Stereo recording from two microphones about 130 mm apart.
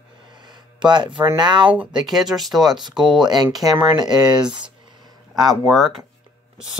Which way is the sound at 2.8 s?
35° right (ahead or behind).